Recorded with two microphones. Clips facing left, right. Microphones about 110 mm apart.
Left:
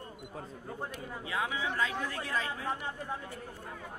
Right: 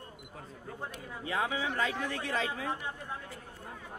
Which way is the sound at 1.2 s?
35° right (ahead or behind).